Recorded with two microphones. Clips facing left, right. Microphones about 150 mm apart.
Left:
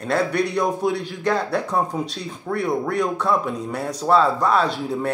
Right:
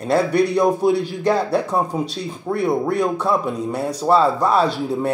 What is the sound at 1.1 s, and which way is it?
Speech, 30° right (ahead or behind).